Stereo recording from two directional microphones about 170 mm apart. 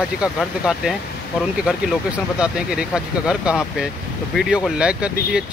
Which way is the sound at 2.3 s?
5° right (ahead or behind).